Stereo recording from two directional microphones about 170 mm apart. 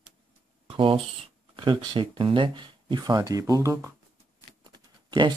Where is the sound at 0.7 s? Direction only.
30° right (ahead or behind).